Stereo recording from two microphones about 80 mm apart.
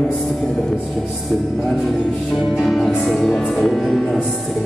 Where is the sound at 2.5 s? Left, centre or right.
Centre.